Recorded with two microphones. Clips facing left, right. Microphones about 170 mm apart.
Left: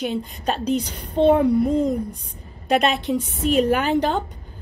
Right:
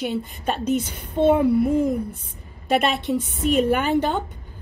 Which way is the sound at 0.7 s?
5° right (ahead or behind).